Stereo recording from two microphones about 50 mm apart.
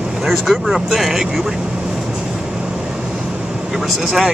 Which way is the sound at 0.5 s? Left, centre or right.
Centre.